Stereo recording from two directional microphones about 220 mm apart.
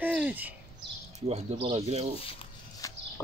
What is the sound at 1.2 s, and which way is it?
Speech, 30° right (ahead or behind).